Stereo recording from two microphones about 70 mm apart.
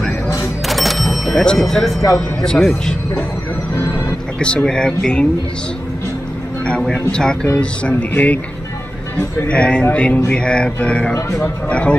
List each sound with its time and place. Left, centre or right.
0.7 s music: centre
1.6 s speech: centre
2.4 s music: centre
3.7 s music: left
4.4 s music: centre
6.6 s music: centre
7.4 s speech: left
9.1 s music: centre